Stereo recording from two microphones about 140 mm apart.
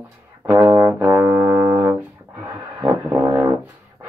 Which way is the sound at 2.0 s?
15° right (ahead or behind).